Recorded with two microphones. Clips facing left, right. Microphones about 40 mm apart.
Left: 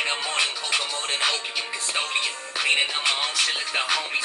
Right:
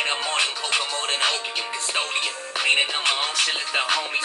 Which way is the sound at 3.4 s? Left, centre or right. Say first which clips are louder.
Right 2 dB; centre.